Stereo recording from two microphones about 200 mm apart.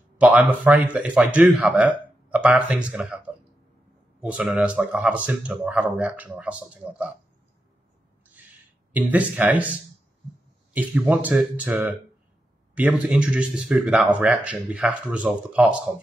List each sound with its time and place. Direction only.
0.2 s speech: 10° right (ahead or behind)
9.1 s speech: 10° right (ahead or behind)
10.7 s speech: 10° right (ahead or behind)